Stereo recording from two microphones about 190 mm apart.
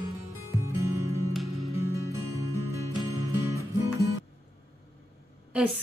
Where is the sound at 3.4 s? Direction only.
15° right (ahead or behind).